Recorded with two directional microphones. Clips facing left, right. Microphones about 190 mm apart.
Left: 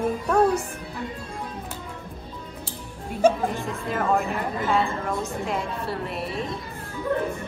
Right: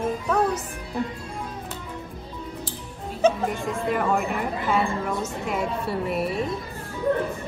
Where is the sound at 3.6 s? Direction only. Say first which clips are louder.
Right 3 dB; centre (ahead or behind).